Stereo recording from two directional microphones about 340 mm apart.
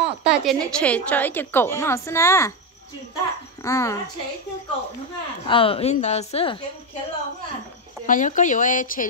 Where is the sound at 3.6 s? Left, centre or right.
Centre.